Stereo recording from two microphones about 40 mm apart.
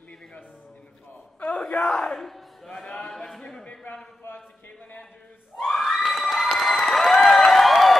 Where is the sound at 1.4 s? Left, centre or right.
Left.